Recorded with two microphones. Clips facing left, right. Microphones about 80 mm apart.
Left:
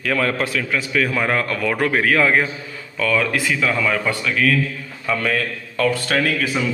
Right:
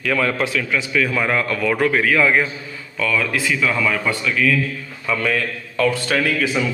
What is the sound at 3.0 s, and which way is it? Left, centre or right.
A man's voice, left.